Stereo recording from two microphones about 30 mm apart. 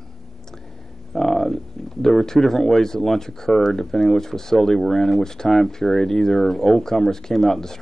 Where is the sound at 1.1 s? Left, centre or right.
Centre.